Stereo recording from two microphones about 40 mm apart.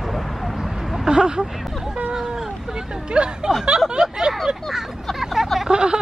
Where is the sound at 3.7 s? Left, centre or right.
Centre.